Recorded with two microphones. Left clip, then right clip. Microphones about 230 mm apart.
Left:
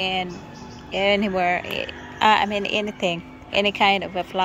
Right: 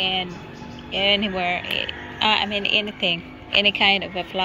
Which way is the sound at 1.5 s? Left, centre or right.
Left.